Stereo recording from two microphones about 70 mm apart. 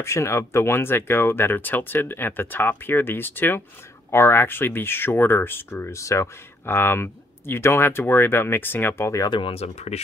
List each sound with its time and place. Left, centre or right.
0.0 s speech: left